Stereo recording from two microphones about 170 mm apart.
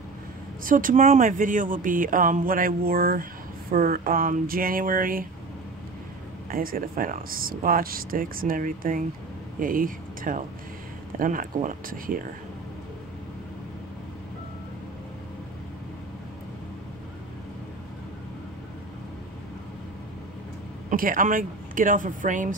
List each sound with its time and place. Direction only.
0.7 s speech: 55° right (ahead or behind)
6.5 s speech: 55° right (ahead or behind)
20.9 s speech: 55° right (ahead or behind)